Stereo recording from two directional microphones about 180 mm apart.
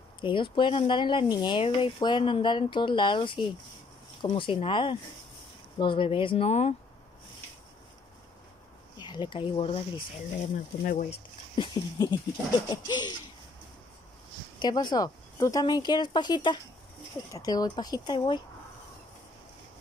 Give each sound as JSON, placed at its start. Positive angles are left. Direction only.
{"t": 0.2, "sound": "speech", "side_deg": 25}
{"t": 8.9, "sound": "speech", "side_deg": 25}
{"t": 10.5, "sound": "speech", "side_deg": 50}
{"t": 11.1, "sound": "speech", "side_deg": 25}
{"t": 14.6, "sound": "speech", "side_deg": 25}